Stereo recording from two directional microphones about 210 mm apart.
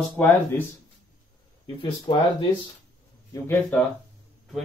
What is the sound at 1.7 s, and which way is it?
Speech, 20° left (ahead or behind).